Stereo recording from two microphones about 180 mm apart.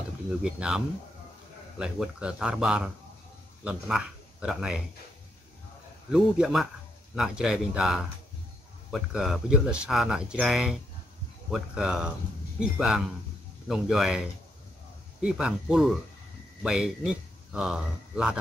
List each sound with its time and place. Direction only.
0.4 s speech: 5° right (ahead or behind)
6.1 s speech: 5° right (ahead or behind)
15.2 s speech: 5° right (ahead or behind)